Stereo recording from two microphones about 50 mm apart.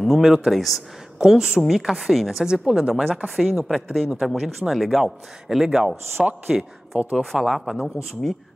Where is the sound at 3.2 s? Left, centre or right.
Centre.